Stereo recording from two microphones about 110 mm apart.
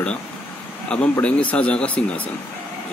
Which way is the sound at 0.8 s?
10° left (ahead or behind).